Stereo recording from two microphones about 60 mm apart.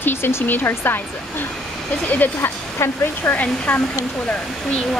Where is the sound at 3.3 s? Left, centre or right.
Left.